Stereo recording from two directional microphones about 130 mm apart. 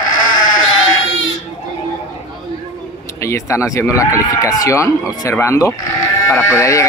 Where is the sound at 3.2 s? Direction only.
20° left (ahead or behind).